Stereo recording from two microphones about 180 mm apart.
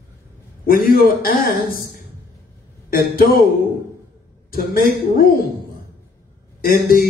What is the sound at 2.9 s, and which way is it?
Speech, 55° left (ahead or behind).